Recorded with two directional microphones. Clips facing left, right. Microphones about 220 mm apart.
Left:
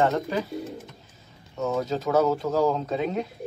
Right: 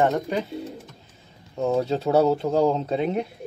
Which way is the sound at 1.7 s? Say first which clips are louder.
Right 3 dB; 30° right (ahead or behind).